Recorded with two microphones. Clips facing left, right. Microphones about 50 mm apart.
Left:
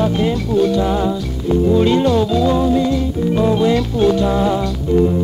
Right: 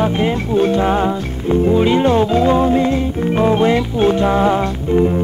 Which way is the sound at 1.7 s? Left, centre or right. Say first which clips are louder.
Even; right.